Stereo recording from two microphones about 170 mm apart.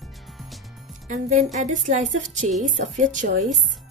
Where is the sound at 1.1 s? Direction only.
45° right (ahead or behind).